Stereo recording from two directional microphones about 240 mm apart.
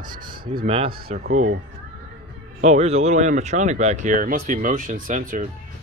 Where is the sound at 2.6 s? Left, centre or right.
Right.